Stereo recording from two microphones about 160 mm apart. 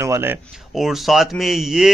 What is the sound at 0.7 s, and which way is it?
A man's voice, centre (ahead or behind).